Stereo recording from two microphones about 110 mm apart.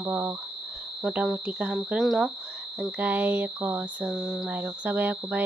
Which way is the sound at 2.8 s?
15° right (ahead or behind).